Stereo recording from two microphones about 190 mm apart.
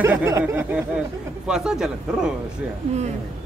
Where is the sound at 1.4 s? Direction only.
5° right (ahead or behind).